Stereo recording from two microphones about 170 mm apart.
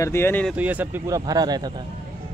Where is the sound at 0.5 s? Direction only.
10° right (ahead or behind).